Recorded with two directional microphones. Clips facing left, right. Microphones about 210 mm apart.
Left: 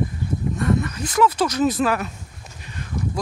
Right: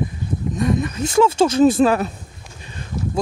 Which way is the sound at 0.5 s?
15° right (ahead or behind).